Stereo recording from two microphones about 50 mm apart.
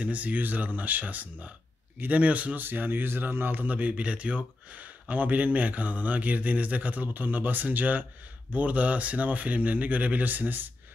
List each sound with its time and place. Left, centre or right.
0.0 s speech: right
2.6 s speech: right